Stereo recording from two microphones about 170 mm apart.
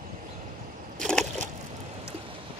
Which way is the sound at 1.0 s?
5° left (ahead or behind).